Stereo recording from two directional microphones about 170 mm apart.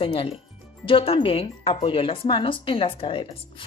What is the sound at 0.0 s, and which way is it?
Speech, 35° left (ahead or behind).